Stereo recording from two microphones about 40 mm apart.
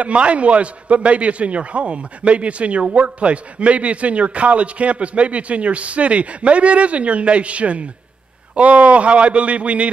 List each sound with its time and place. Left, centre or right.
0.0 s a man's voice: right